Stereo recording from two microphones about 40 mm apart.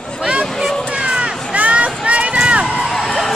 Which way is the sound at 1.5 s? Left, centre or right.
Right.